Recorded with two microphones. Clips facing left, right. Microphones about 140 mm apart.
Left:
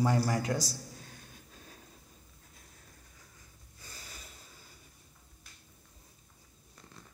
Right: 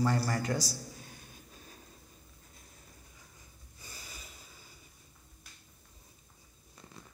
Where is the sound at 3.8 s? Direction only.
10° right (ahead or behind).